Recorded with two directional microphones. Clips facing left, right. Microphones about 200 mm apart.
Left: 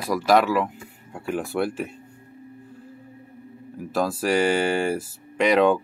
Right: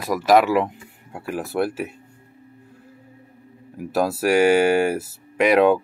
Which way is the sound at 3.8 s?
10° right (ahead or behind).